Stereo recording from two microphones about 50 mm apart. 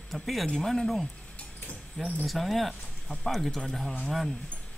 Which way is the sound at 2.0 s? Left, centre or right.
Centre.